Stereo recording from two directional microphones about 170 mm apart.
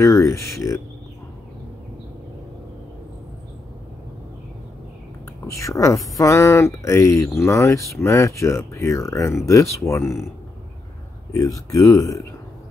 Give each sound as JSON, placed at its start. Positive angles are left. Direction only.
{"t": 0.0, "sound": "speech", "side_deg": 20}
{"t": 5.5, "sound": "speech", "side_deg": 20}
{"t": 11.3, "sound": "speech", "side_deg": 20}